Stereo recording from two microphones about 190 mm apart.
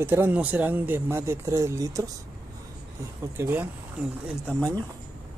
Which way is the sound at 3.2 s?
10° right (ahead or behind).